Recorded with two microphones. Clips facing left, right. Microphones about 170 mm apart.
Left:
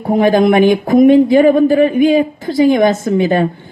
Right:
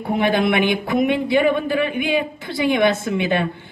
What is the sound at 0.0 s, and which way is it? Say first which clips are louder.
Speech: left 8 dB; 40° left (ahead or behind).